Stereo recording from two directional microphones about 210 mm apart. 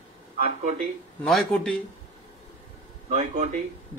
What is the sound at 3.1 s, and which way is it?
Speech, 35° right (ahead or behind).